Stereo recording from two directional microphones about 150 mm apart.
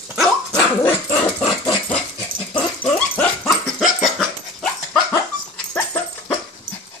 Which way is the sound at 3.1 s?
10° left (ahead or behind).